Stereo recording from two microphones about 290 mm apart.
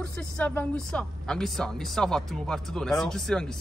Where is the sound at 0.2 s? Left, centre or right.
Centre.